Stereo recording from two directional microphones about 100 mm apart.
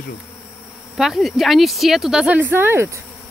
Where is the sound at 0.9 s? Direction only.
Centre (ahead or behind).